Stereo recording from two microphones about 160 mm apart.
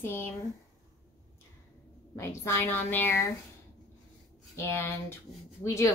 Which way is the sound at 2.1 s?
15° left (ahead or behind).